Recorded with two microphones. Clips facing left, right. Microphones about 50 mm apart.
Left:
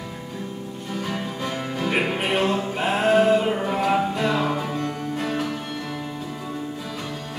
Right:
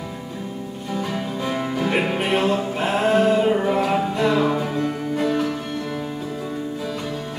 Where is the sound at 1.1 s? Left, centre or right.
Centre.